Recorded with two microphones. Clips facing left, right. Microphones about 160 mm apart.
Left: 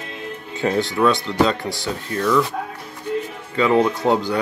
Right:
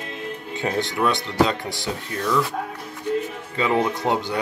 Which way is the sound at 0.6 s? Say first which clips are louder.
Left 5 dB; 15° right (ahead or behind).